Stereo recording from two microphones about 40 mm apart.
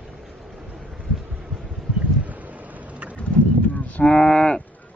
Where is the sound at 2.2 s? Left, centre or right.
Right.